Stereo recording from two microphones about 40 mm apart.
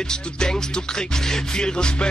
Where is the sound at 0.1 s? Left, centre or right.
Centre.